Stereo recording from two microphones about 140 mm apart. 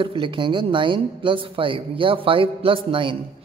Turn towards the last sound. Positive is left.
turn(degrees=-40)  # may be behind; listen again after turning